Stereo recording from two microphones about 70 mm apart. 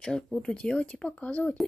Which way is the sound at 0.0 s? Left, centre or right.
Centre.